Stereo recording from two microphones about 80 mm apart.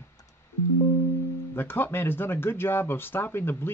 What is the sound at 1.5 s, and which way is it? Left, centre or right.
Speech, left.